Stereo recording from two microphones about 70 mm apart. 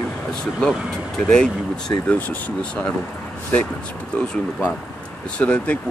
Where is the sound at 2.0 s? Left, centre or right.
Left.